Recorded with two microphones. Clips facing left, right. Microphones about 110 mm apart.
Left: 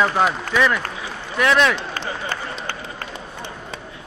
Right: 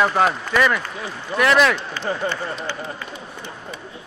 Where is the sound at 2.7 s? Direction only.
50° left (ahead or behind).